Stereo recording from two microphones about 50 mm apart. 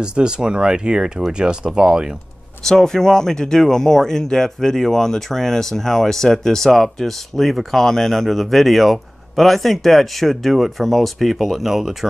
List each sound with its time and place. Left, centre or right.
0.0 s speech: centre
2.6 s speech: centre